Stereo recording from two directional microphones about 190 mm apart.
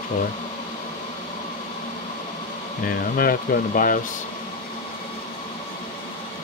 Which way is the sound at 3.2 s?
50° left (ahead or behind).